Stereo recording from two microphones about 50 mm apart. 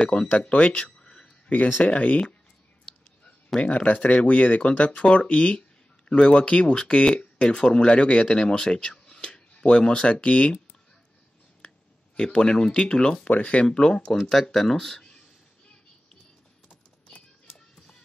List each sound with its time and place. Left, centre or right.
0.0 s speech: centre
0.9 s a sound: centre
1.5 s speech: left
3.5 s speech: left
12.2 s speech: centre
13.3 s speech: left